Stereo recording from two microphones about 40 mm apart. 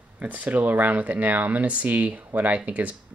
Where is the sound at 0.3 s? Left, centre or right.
Right.